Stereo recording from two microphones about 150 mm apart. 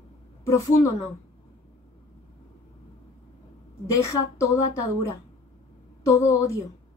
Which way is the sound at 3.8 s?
20° left (ahead or behind).